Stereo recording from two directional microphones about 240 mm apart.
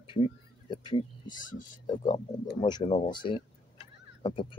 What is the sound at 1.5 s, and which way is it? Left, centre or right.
Speech, left.